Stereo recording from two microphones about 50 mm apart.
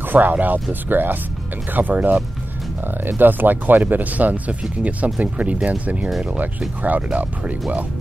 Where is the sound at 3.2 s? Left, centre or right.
Right.